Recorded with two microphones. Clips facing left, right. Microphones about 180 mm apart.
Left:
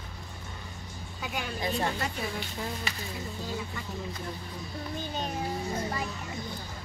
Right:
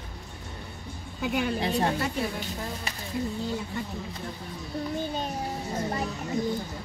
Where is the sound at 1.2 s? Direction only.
55° right (ahead or behind).